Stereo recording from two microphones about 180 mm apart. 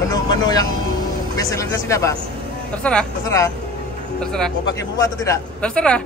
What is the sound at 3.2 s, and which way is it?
Speech, 20° left (ahead or behind).